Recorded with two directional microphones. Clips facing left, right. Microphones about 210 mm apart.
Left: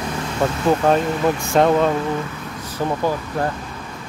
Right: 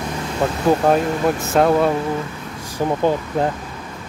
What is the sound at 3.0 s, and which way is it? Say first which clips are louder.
Speech: right 3 dB; 20° right (ahead or behind).